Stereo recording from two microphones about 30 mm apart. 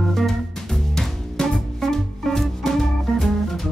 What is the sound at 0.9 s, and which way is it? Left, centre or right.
Music, centre.